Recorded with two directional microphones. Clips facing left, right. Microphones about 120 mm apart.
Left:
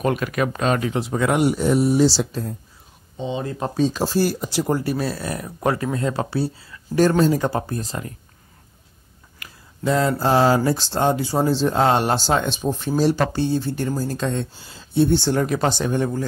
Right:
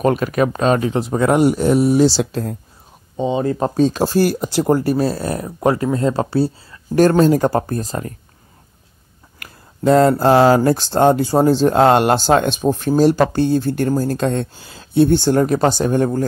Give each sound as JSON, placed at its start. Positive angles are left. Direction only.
{"t": 0.0, "sound": "speech", "side_deg": -35}
{"t": 3.2, "sound": "speech", "side_deg": -45}
{"t": 7.0, "sound": "speech", "side_deg": -55}
{"t": 9.4, "sound": "speech", "side_deg": -55}